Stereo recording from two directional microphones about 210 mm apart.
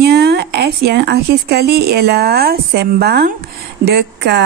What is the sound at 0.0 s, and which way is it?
Speech, 50° right (ahead or behind).